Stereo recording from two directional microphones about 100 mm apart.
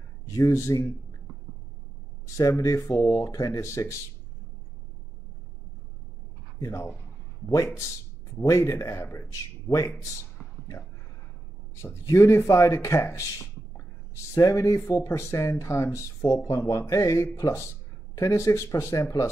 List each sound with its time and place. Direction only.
0.5 s speech: 25° left (ahead or behind)
2.3 s speech: 35° left (ahead or behind)
6.6 s speech: 30° left (ahead or behind)
8.4 s speech: 30° left (ahead or behind)
11.7 s speech: 30° left (ahead or behind)
14.3 s speech: 30° left (ahead or behind)